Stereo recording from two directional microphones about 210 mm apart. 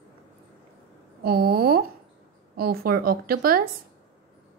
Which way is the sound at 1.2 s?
45° right (ahead or behind).